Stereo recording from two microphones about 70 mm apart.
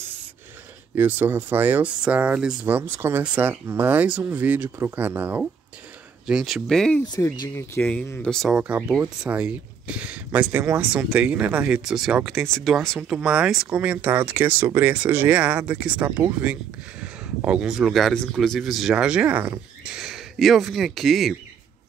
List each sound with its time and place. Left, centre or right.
0.9 s speech: right
2.6 s speech: right
6.2 s speech: centre
6.7 s speech: centre
7.2 s speech: left
8.5 s speech: centre
10.5 s speech: right
10.8 s speech: centre
11.8 s speech: centre
13.1 s speech: centre
14.6 s speech: right
14.9 s speech: right; by 21.4 s centre